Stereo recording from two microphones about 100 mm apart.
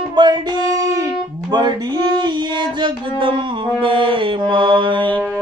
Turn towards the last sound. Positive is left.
turn(degrees=-55)  # may be behind; listen again after turning